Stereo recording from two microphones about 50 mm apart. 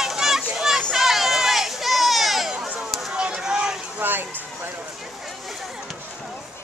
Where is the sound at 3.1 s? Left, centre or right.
Centre.